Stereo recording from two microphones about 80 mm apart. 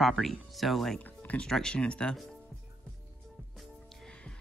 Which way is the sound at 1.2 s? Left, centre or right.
Centre.